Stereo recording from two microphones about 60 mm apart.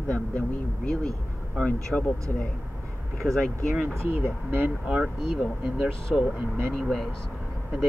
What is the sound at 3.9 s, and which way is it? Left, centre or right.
Speech, right.